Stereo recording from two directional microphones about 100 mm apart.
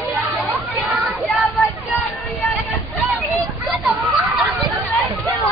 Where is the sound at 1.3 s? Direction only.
Centre (ahead or behind).